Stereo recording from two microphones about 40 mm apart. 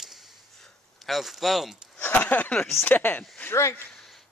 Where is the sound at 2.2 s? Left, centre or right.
Left.